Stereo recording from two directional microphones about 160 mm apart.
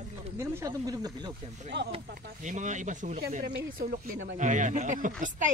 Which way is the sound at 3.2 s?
70° right (ahead or behind).